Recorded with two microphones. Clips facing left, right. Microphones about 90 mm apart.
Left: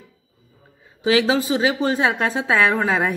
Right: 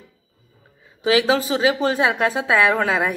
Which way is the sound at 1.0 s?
30° left (ahead or behind).